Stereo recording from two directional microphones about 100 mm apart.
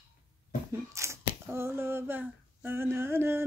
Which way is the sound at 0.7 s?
30° right (ahead or behind).